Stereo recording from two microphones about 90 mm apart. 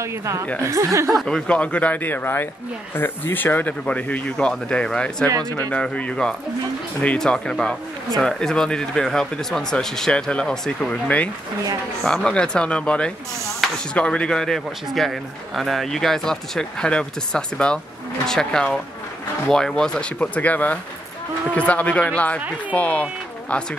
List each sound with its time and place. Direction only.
0.0 s speech: 35° right (ahead or behind)
1.1 s a man's voice: 10° left (ahead or behind)